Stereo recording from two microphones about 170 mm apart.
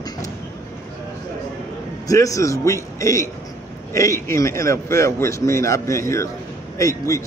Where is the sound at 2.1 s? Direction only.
20° left (ahead or behind).